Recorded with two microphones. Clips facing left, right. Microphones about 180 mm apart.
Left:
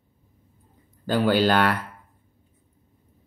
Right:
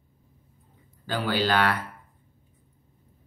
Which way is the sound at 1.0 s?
45° left (ahead or behind).